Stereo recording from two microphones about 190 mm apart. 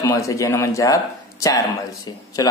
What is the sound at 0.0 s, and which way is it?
Speech, 15° left (ahead or behind).